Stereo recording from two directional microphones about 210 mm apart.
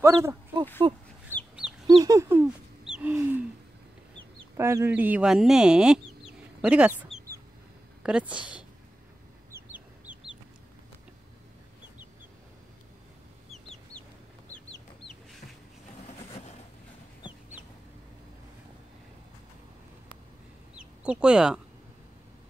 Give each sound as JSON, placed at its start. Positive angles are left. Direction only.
{"t": 0.0, "sound": "speech", "side_deg": -15}
{"t": 1.3, "sound": "chicken", "side_deg": -10}
{"t": 1.9, "sound": "a sound", "side_deg": -20}
{"t": 4.6, "sound": "speech", "side_deg": -10}
{"t": 9.5, "sound": "chicken", "side_deg": -10}
{"t": 13.5, "sound": "chicken", "side_deg": 0}
{"t": 17.2, "sound": "chicken", "side_deg": 20}
{"t": 20.7, "sound": "chicken", "side_deg": -5}